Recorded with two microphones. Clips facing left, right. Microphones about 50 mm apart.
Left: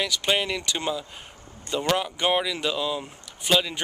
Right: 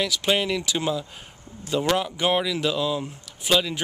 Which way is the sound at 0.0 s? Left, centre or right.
Centre.